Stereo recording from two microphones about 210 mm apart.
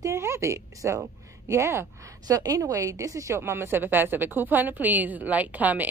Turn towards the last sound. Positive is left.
turn(degrees=-5)  # may be behind; listen again after turning